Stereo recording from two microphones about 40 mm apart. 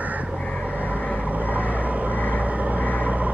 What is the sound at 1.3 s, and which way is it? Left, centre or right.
Vehicle, right.